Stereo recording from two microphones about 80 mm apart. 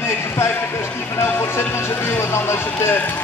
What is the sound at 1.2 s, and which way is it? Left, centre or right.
Speech, left.